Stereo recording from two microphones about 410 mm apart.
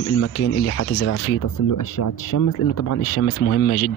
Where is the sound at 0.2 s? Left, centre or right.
Left.